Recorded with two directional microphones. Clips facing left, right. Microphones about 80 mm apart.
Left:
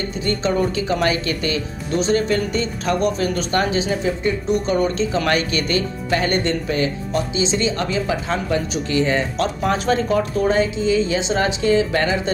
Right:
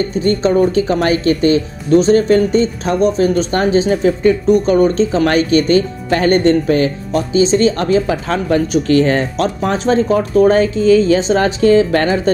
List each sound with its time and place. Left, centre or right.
0.1 s speech: right